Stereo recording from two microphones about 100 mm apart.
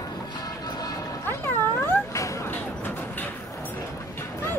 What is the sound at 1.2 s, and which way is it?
Cat, 25° left (ahead or behind).